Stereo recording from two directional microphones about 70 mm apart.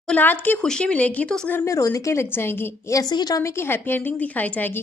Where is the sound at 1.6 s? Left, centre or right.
Left.